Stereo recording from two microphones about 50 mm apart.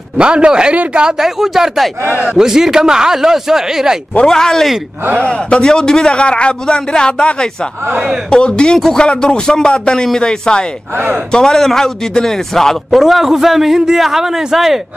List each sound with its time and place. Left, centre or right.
0.2 s a man's voice: right
1.2 s a man's voice: centre
4.3 s a man's voice: centre
12.9 s a man's voice: centre